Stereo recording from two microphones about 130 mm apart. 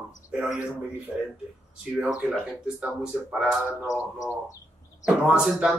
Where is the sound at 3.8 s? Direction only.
25° left (ahead or behind).